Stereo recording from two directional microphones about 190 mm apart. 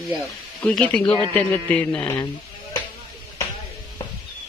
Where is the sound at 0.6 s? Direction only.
5° left (ahead or behind).